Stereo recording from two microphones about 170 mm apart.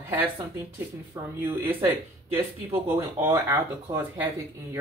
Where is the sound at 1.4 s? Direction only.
15° right (ahead or behind).